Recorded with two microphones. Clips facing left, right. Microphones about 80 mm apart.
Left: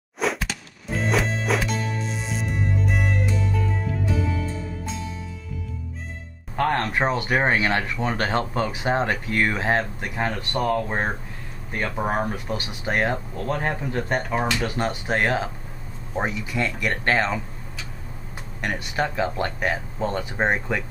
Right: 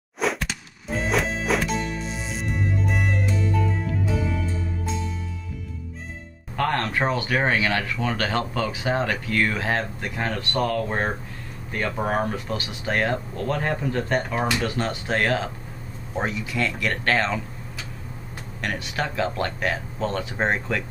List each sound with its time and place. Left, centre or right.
0.2 s music: centre
6.5 s speech: left
16.5 s speech: centre
18.6 s speech: centre